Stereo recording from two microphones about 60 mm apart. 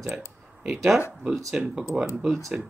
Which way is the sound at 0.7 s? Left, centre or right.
Centre.